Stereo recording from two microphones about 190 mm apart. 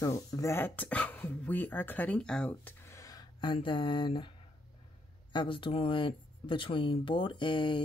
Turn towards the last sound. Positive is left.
turn(degrees=25)  # may be behind; listen again after turning